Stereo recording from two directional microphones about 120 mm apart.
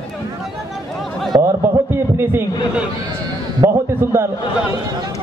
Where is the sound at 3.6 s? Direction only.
25° right (ahead or behind).